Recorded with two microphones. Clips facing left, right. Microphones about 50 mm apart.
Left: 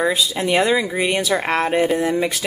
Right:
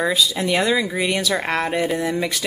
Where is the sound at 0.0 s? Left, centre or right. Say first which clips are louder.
Left 1 dB; centre.